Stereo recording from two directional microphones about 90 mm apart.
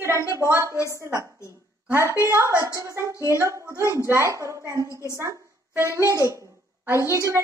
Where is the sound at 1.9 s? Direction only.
35° right (ahead or behind).